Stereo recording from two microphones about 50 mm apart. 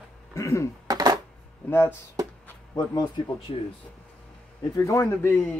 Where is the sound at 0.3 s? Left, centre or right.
Left.